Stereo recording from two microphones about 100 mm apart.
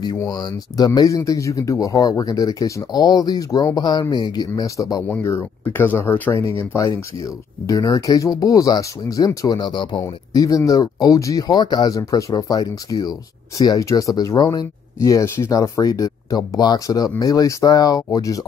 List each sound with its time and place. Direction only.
0.2 s speech: 45° left (ahead or behind)
5.0 s speech: 20° left (ahead or behind); by 9.6 s 35° left (ahead or behind)
9.6 s speech: 50° left (ahead or behind)
15.0 s speech: 30° left (ahead or behind)